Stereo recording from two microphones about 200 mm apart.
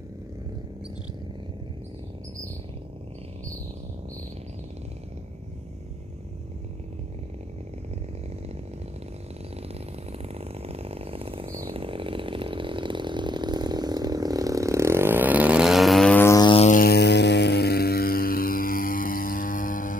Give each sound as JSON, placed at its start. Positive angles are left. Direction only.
{"t": 10.1, "sound": "vehicle", "side_deg": -30}
{"t": 11.6, "sound": "chainsaw", "side_deg": -25}
{"t": 16.6, "sound": "vehicle", "side_deg": 45}